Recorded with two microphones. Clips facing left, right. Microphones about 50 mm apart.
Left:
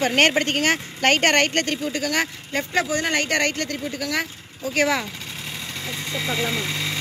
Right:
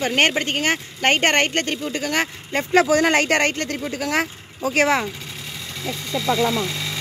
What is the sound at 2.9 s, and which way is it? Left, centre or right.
Speech, right.